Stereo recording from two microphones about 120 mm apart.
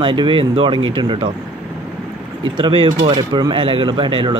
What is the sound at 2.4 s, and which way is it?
Speech, 45° right (ahead or behind).